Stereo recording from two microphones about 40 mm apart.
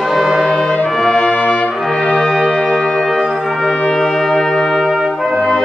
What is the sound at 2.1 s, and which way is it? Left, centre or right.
Brass instrument, centre.